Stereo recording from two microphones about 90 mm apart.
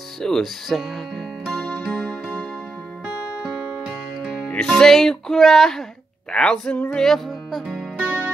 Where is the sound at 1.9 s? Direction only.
15° left (ahead or behind).